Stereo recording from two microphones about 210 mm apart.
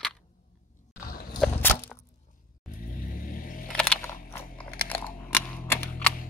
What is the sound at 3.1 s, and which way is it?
Vehicle, 40° left (ahead or behind).